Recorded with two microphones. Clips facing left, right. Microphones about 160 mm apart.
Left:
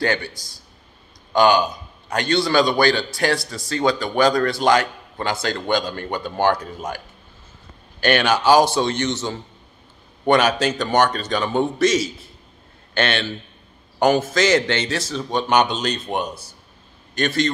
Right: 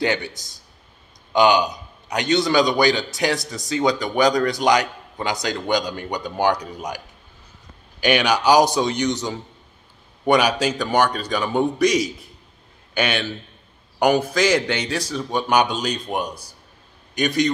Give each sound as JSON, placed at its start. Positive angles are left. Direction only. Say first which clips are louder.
{"t": 0.0, "sound": "a man's voice", "louder": "even", "side_deg": -20}
{"t": 8.0, "sound": "a man's voice", "louder": "left 1 dB", "side_deg": -15}